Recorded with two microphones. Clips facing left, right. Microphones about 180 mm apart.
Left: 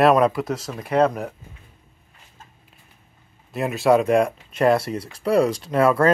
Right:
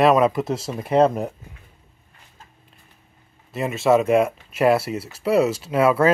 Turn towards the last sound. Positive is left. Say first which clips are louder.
# even
turn(degrees=-5)  # may be behind; listen again after turning